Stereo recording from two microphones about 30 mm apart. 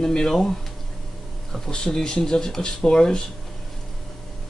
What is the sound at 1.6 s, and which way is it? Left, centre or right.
Speech, left.